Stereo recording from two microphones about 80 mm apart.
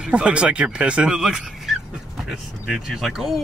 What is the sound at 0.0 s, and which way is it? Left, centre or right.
Speech, centre.